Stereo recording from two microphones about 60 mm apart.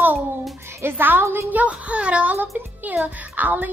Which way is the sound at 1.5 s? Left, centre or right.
Right.